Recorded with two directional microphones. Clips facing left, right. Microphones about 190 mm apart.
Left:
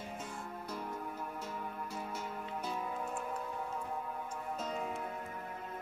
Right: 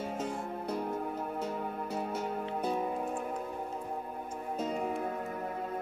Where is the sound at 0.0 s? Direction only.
85° right; by 0.6 s 60° right (ahead or behind).